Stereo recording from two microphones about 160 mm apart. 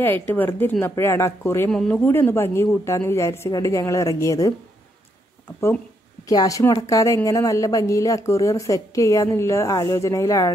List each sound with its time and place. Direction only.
0.3 s speech: 10° left (ahead or behind)
6.2 s a woman's voice: 20° left (ahead or behind)